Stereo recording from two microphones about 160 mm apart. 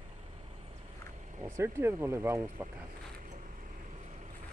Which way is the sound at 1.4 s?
15° right (ahead or behind).